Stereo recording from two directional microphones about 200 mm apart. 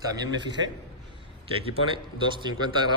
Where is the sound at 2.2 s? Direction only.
25° right (ahead or behind).